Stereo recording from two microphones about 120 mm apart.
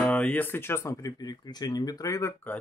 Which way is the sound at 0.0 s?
10° left (ahead or behind).